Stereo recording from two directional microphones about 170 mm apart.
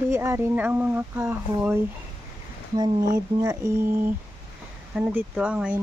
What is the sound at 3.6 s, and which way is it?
Speech, 15° right (ahead or behind).